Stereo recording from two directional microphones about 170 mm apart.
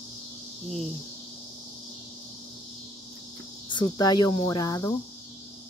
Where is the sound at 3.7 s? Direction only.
25° left (ahead or behind).